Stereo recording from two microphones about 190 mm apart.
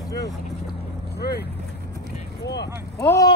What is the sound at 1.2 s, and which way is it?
Boat, 60° left (ahead or behind).